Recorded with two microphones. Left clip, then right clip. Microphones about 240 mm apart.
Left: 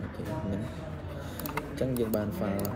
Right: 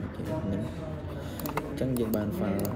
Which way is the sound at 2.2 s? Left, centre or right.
Centre.